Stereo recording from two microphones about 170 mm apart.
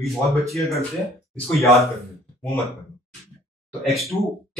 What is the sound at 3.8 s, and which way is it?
Speech, centre (ahead or behind).